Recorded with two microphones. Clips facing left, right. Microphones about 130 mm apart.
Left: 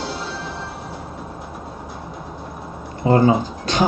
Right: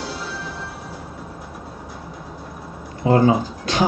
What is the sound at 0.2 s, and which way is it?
Train, 25° left (ahead or behind).